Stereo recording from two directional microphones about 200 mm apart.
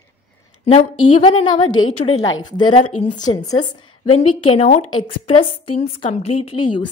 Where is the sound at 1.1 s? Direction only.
25° left (ahead or behind).